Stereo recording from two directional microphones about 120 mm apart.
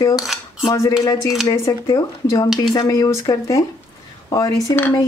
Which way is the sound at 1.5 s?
25° left (ahead or behind).